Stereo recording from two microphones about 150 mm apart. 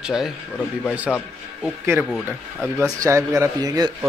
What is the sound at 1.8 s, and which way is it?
Speech, 15° right (ahead or behind).